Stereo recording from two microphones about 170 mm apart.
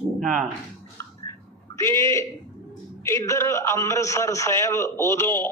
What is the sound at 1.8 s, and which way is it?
A man's voice, 15° left (ahead or behind).